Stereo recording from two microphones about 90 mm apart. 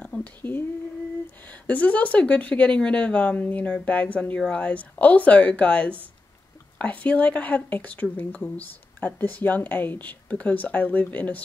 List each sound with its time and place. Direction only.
0.0 s speech: 15° left (ahead or behind)